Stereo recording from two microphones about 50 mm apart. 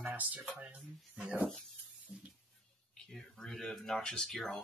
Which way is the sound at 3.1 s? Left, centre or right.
Centre.